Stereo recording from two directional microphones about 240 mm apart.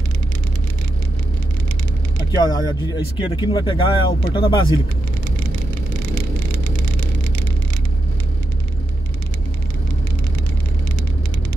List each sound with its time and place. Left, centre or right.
2.3 s speech: centre